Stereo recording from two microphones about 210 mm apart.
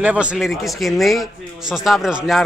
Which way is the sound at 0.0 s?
5° right (ahead or behind).